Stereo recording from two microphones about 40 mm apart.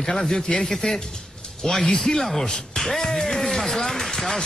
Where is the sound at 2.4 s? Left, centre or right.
Centre.